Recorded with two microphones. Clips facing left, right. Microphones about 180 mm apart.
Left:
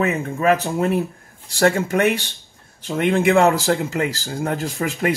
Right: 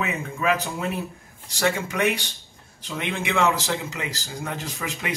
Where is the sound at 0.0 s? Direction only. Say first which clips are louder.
Left 7 dB; 45° left (ahead or behind).